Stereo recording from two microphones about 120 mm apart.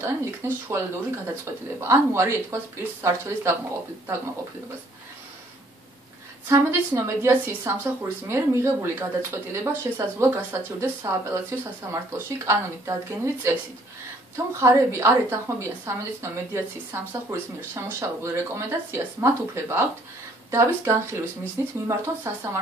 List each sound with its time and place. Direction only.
0.0 s a woman's voice: 20° right (ahead or behind)
7.1 s a woman's voice: 20° right (ahead or behind)